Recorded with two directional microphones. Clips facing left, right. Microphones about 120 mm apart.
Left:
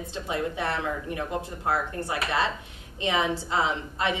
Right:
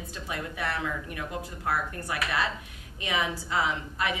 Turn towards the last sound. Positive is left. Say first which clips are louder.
# left 3 dB
turn(degrees=25)  # may be behind; listen again after turning